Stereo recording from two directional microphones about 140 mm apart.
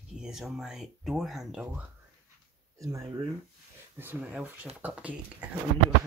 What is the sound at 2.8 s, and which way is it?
Speech, 25° right (ahead or behind).